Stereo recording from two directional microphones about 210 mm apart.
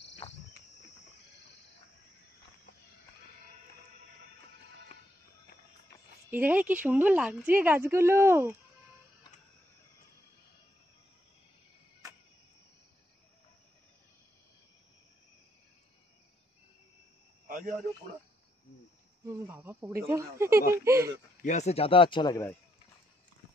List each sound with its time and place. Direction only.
0.2 s cricket: 25° left (ahead or behind)
6.3 s speech: 10° right (ahead or behind)
17.5 s a sound: 40° right (ahead or behind)
19.2 s speech: 10° right (ahead or behind)
21.4 s speech: 35° left (ahead or behind); by 22.6 s 15° left (ahead or behind)